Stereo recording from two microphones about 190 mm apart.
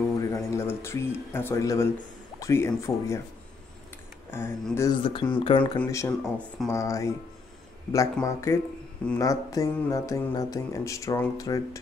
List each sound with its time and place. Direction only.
0.2 s speech: 15° left (ahead or behind)
4.3 s speech: 10° left (ahead or behind)
5.0 s speech: 25° left (ahead or behind)
5.6 s speech: 10° left (ahead or behind)
6.2 s speech: 5° right (ahead or behind)
6.7 s speech: 15° left (ahead or behind)